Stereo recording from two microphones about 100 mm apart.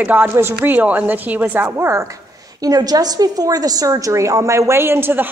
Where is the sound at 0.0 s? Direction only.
15° right (ahead or behind).